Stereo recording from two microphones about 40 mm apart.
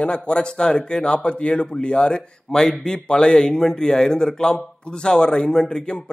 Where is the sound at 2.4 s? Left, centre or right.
Centre.